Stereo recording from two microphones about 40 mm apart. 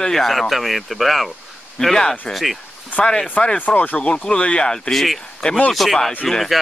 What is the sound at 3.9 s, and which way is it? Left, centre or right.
Speech, left.